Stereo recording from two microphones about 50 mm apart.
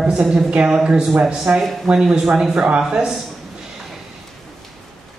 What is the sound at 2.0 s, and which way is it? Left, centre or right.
Speech, centre.